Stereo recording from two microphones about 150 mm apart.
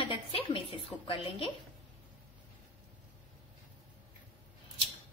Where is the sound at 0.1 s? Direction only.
35° left (ahead or behind).